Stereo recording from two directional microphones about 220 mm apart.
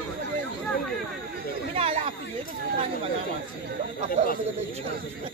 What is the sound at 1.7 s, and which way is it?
Chatter, 25° right (ahead or behind).